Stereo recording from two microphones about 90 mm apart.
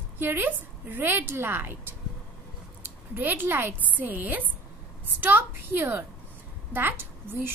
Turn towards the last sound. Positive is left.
turn(degrees=-25)  # may be behind; listen again after turning